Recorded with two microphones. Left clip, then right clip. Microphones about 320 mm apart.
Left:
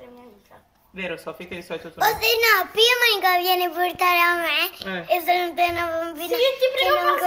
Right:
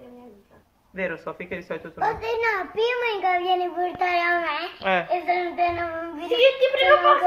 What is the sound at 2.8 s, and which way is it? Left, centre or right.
Speech, left.